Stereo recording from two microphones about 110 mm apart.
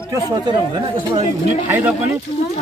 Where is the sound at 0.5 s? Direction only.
45° right (ahead or behind).